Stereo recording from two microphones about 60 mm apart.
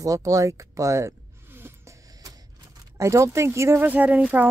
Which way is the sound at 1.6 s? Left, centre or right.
Right.